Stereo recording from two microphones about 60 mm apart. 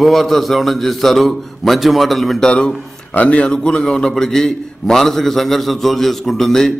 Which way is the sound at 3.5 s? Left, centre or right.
Centre.